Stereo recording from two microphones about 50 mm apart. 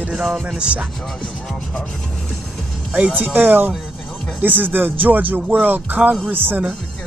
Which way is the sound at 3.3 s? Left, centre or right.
Right.